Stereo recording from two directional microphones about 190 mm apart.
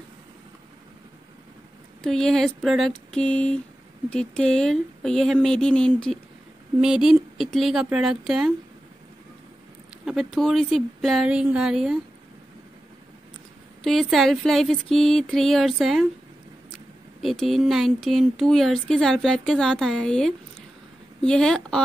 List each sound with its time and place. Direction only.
2.0 s speech: centre (ahead or behind)
10.0 s speech: centre (ahead or behind)
13.8 s speech: centre (ahead or behind)
17.2 s speech: centre (ahead or behind)